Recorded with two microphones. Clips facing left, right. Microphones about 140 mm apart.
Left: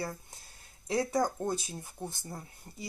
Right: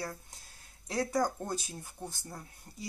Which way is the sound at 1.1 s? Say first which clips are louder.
Left 2 dB; 15° left (ahead or behind).